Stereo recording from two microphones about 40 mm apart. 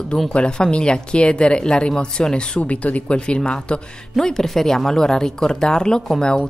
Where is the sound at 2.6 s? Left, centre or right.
Left.